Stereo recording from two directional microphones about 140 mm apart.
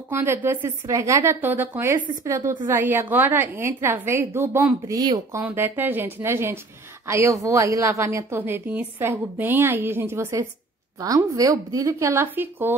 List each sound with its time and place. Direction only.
0.1 s a woman's voice: 15° right (ahead or behind)
4.8 s a woman's voice: 30° right (ahead or behind)
5.4 s a woman's voice: 15° right (ahead or behind)